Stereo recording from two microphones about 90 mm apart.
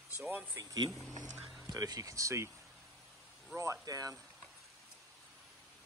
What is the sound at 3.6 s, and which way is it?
Speech, 35° right (ahead or behind).